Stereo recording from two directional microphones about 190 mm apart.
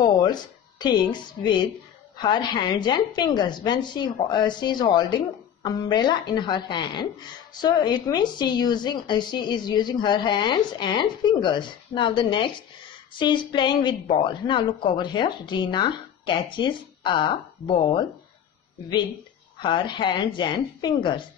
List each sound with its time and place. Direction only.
0.0 s a woman's voice: 20° left (ahead or behind)
19.6 s a woman's voice: 25° left (ahead or behind)